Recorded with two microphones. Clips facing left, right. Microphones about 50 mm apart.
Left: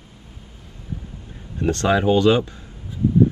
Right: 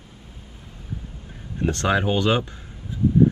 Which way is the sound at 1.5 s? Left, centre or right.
Right.